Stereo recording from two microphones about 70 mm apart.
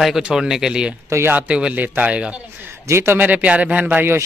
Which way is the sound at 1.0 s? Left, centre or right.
Right.